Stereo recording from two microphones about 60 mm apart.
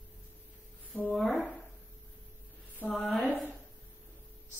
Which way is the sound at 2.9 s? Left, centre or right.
Centre.